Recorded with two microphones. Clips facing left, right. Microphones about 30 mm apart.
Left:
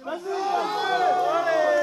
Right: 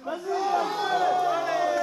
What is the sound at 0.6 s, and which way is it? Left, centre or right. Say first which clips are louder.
Run: left 2 dB; left.